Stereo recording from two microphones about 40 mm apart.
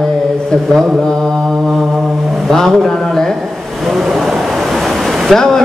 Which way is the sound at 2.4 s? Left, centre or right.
Centre.